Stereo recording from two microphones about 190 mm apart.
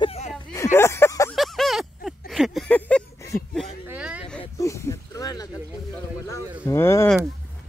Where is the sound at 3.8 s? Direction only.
5° right (ahead or behind).